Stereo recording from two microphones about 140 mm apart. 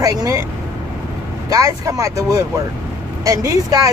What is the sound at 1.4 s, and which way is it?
Speech, 25° right (ahead or behind).